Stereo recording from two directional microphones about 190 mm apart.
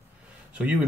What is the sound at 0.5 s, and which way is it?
Speech, 5° right (ahead or behind).